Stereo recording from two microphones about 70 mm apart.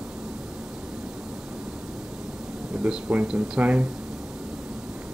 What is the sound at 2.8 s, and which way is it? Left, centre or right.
Speech, right.